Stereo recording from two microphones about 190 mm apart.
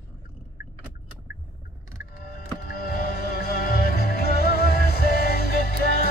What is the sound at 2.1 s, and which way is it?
Music, 50° left (ahead or behind).